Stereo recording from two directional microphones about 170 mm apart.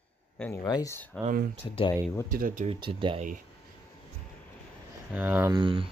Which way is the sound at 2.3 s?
55° right (ahead or behind).